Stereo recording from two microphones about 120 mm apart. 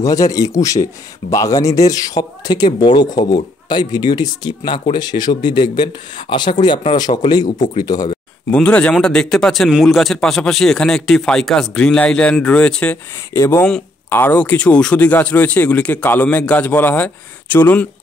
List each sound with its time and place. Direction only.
0.0 s speech: 30° left (ahead or behind)
8.5 s speech: 10° left (ahead or behind)
13.3 s speech: 20° left (ahead or behind)